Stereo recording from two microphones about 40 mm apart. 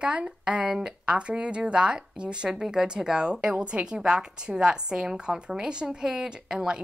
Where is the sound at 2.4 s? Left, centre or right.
Centre.